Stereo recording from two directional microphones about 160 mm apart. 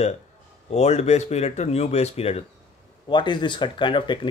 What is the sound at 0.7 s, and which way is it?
Speech, 45° left (ahead or behind).